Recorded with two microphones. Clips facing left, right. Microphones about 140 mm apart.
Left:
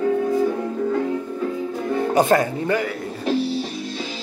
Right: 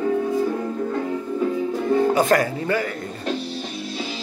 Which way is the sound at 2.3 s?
20° left (ahead or behind).